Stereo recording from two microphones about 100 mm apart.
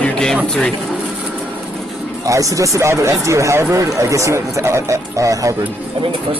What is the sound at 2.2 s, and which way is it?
Speech, 35° right (ahead or behind).